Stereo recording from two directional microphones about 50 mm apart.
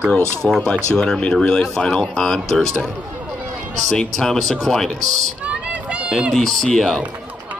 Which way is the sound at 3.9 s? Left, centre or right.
Centre.